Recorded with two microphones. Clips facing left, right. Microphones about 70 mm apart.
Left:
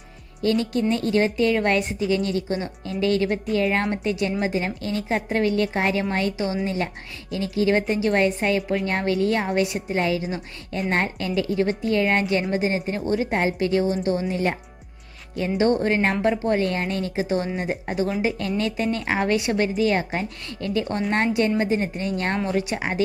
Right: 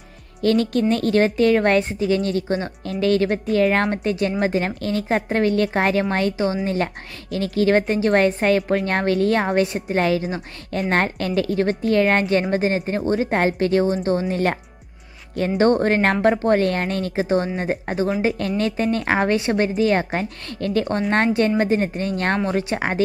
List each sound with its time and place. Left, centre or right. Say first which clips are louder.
0.4 s a woman's voice: right 3 dB; right
14.3 s a woman's voice: right 3 dB; right